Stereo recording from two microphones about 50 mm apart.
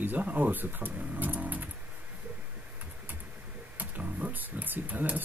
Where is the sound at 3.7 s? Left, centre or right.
Right.